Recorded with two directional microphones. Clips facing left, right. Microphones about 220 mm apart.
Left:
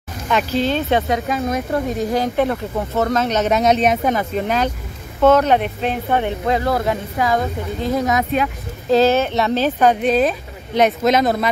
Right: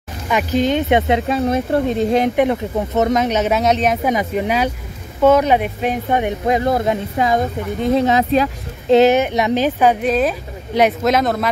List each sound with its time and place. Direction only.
0.3 s speech: 15° right (ahead or behind)
4.1 s speech: 15° right (ahead or behind)